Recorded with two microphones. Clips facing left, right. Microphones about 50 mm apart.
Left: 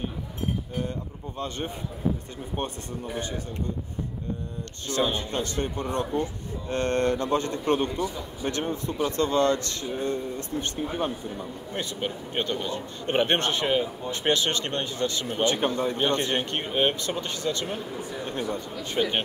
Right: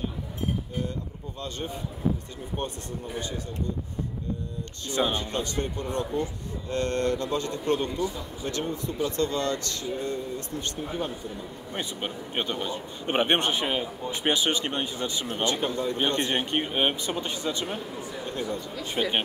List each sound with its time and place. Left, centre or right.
2.6 s speech: left
5.0 s speech: centre
5.3 s a man's voice: left
11.7 s speech: centre
15.4 s a man's voice: left
16.2 s speech: centre
19.0 s speech: centre